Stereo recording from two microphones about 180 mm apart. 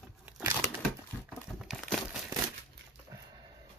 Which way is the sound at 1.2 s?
Centre (ahead or behind).